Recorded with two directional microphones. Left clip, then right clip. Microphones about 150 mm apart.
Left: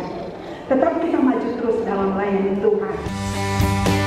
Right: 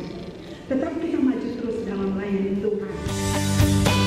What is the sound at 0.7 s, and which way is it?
A woman's voice, 20° left (ahead or behind).